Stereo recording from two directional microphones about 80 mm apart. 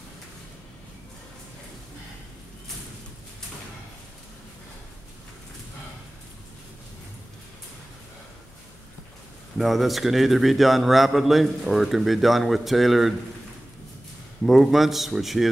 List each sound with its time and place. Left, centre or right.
9.6 s a man's voice: centre
14.4 s a man's voice: centre